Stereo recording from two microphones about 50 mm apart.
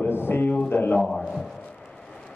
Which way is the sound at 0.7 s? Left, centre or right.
Left.